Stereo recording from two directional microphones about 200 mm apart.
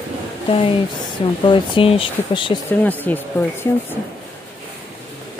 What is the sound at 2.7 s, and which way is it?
Speech, 10° left (ahead or behind).